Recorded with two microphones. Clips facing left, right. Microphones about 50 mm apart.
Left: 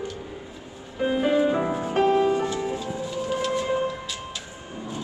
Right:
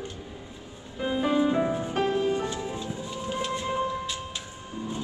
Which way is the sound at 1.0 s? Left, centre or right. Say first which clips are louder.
Left 3 dB; left.